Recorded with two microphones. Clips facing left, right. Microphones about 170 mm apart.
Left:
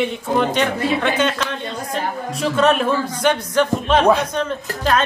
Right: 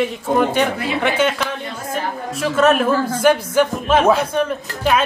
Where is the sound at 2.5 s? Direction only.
5° right (ahead or behind).